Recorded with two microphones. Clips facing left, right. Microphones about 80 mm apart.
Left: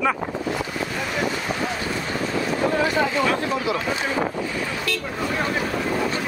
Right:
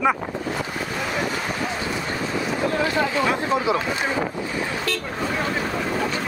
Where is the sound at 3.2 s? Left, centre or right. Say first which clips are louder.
Right 1 dB; right.